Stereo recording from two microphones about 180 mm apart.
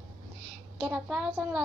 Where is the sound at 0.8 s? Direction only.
5° right (ahead or behind).